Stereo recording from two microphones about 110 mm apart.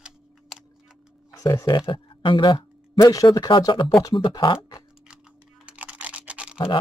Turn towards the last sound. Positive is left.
turn(degrees=-10)  # may be behind; listen again after turning